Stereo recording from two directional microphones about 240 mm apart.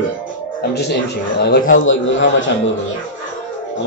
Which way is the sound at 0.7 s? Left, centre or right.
Left.